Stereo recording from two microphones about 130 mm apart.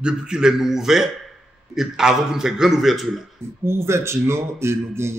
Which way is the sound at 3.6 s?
20° right (ahead or behind).